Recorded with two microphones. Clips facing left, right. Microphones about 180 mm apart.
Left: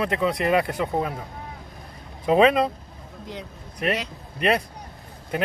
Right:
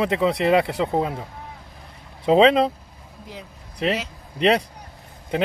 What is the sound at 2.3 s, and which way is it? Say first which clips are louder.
Speech: right 2 dB; 25° right (ahead or behind).